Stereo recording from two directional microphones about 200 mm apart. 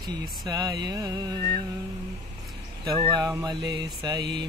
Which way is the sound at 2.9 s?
20° right (ahead or behind).